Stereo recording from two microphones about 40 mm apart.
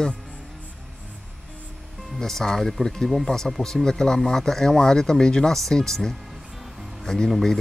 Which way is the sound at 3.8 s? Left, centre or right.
Centre.